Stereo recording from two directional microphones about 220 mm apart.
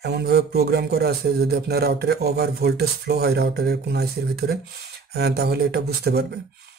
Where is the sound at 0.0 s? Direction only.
45° right (ahead or behind).